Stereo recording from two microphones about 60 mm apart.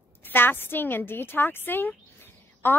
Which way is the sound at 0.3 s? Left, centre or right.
Left.